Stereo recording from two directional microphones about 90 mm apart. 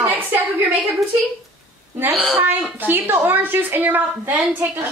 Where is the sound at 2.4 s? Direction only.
20° right (ahead or behind).